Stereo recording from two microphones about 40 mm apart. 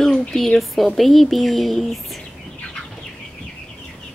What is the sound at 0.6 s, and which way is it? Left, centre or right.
Speech, centre.